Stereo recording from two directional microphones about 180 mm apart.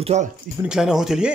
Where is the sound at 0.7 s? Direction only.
5° right (ahead or behind).